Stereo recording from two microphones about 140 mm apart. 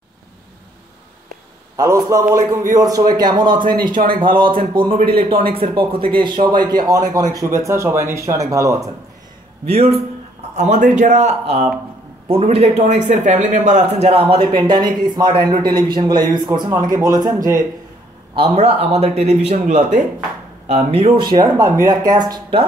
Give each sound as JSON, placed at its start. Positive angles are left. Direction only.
{"t": 1.8, "sound": "speech", "side_deg": -25}
{"t": 3.9, "sound": "speech", "side_deg": -90}
{"t": 4.2, "sound": "speech", "side_deg": -35}
{"t": 9.7, "sound": "speech", "side_deg": -45}
{"t": 10.5, "sound": "speech", "side_deg": -65}
{"t": 18.3, "sound": "speech", "side_deg": -35}
{"t": 21.2, "sound": "speech", "side_deg": -30}